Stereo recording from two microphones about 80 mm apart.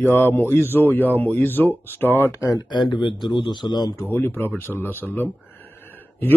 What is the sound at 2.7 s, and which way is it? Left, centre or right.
A man's voice, left.